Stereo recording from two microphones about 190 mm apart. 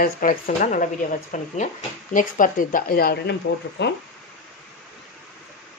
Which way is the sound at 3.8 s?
65° left (ahead or behind).